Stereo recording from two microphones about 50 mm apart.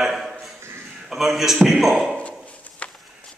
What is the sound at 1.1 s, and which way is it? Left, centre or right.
Speech, centre.